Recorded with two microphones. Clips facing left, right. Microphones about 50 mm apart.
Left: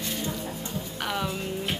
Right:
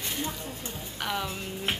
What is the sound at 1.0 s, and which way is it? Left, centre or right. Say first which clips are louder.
Speech: left 1 dB; centre.